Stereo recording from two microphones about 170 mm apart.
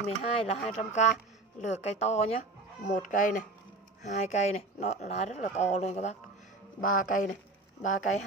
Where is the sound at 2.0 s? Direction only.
40° left (ahead or behind).